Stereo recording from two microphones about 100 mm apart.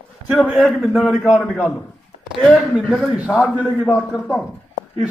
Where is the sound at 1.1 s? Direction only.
15° right (ahead or behind).